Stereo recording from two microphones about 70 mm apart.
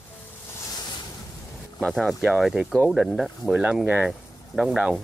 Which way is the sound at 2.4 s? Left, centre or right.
Centre.